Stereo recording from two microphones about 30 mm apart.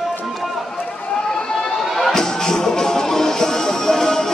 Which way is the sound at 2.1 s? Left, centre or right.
Centre.